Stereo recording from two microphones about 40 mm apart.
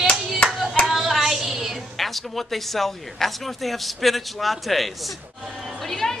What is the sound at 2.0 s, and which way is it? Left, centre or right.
Speech, centre.